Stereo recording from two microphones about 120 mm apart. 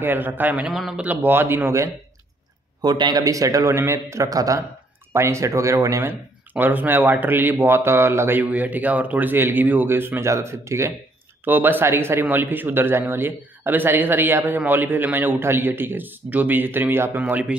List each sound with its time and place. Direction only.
0.0 s speech: 15° right (ahead or behind)
0.7 s speech: 5° right (ahead or behind)
1.0 s a man's voice: 15° right (ahead or behind)
2.8 s a man's voice: 35° right (ahead or behind)
6.5 s speech: 15° right (ahead or behind)